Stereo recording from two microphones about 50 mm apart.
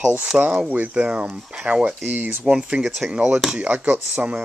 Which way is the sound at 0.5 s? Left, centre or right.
Right.